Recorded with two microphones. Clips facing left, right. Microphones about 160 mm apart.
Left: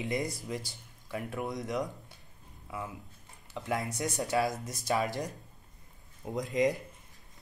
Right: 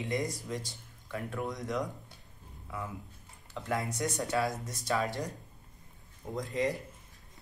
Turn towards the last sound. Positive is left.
turn(degrees=20)  # may be behind; listen again after turning